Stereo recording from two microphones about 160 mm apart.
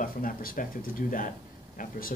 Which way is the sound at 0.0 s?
60° left (ahead or behind).